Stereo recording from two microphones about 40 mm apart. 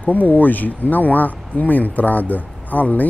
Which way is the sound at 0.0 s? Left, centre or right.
Left.